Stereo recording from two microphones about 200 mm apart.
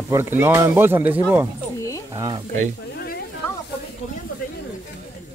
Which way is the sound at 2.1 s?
20° right (ahead or behind).